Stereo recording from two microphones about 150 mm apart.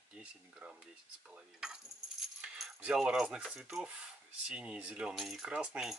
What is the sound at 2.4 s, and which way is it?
Keys jangling, 5° right (ahead or behind).